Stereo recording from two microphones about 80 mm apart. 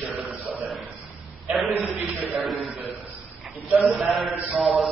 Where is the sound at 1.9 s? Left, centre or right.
Right.